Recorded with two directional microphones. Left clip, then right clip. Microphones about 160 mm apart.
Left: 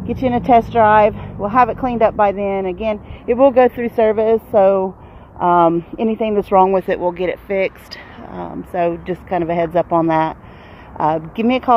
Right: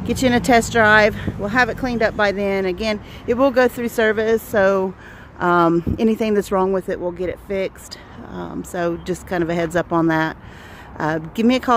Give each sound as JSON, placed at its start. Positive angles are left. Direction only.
{"t": 0.0, "sound": "speech", "side_deg": -40}
{"t": 1.5, "sound": "speech", "side_deg": -20}
{"t": 2.1, "sound": "speech", "side_deg": -35}
{"t": 6.5, "sound": "speech", "side_deg": -20}